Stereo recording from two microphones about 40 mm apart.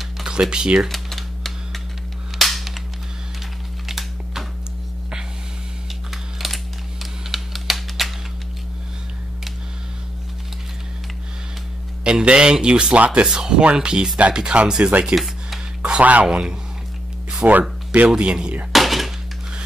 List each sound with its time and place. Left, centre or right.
0.3 s speech: centre
0.8 s typewriter: centre
2.3 s cap gun: centre
3.8 s typing: centre
6.3 s typing: centre
12.0 s a man's voice: right
12.9 s speech: right
15.1 s music: centre
16.0 s speech: right
16.3 s speech: right
17.5 s speech: right
18.1 s speech: right
18.7 s a sound: centre